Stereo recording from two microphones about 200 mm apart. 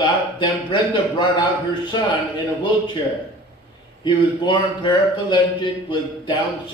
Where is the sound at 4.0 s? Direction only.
25° left (ahead or behind).